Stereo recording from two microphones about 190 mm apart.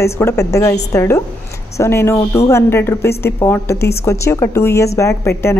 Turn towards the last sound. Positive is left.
turn(degrees=15)  # may be behind; listen again after turning